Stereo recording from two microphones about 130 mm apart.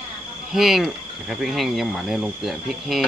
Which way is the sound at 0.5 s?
Centre (ahead or behind).